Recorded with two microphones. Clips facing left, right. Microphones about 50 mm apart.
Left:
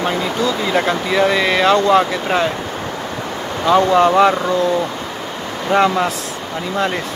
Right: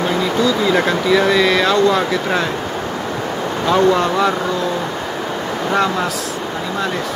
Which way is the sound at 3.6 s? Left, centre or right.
Centre.